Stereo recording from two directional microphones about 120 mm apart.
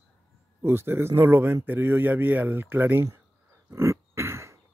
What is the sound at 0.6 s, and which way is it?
Speech, 20° right (ahead or behind).